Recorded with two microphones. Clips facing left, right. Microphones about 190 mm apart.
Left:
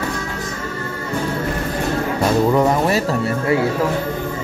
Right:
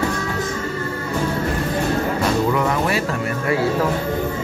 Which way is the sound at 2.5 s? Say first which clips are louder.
Left 4 dB; 35° left (ahead or behind).